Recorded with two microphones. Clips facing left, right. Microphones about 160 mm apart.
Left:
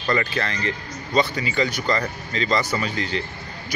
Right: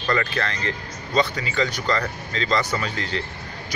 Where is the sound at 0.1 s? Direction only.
10° left (ahead or behind).